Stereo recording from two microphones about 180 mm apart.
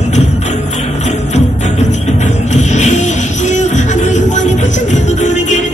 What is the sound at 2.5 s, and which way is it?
Music, 40° left (ahead or behind).